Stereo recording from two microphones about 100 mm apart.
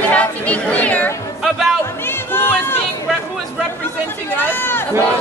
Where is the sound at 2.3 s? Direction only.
20° left (ahead or behind).